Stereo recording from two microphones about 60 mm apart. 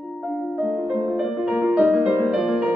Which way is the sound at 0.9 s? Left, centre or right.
Centre.